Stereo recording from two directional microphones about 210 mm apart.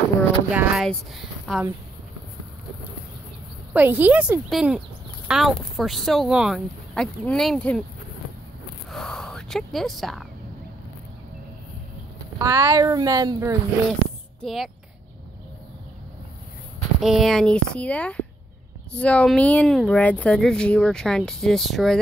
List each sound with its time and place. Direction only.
0.5 s speech: 5° right (ahead or behind)
3.7 s speech: 10° right (ahead or behind)
8.9 s a sound: 5° left (ahead or behind)
12.4 s speech: 15° right (ahead or behind)
14.4 s speech: centre (ahead or behind)
17.0 s speech: centre (ahead or behind)